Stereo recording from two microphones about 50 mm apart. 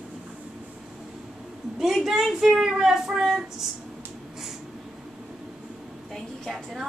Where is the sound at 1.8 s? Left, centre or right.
Centre.